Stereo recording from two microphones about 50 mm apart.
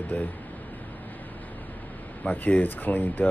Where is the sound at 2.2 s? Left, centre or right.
Left.